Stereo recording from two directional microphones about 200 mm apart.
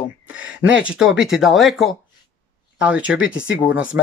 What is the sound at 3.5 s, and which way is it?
Speech, 75° left (ahead or behind).